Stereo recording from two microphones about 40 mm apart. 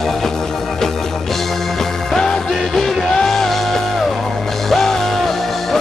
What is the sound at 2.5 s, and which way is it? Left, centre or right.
Music, centre.